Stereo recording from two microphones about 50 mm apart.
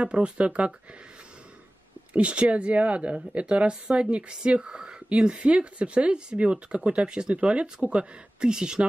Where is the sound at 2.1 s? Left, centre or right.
Right.